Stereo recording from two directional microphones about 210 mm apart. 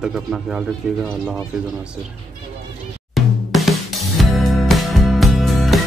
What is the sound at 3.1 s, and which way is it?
Music, centre (ahead or behind).